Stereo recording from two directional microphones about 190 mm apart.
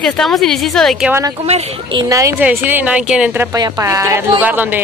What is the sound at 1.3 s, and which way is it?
A woman's voice, 35° right (ahead or behind).